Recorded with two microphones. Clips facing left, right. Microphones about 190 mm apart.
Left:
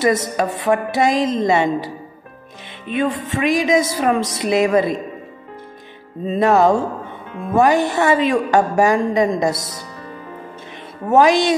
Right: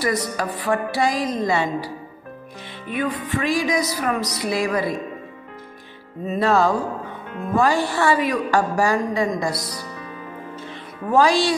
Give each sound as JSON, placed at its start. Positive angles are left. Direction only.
{"t": 0.0, "sound": "a woman's voice", "side_deg": 25}
{"t": 2.9, "sound": "a woman's voice", "side_deg": 25}
{"t": 6.2, "sound": "a woman's voice", "side_deg": 25}
{"t": 11.1, "sound": "a woman's voice", "side_deg": 20}